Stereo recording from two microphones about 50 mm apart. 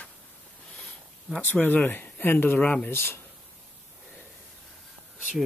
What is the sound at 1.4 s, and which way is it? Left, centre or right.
Speech, left.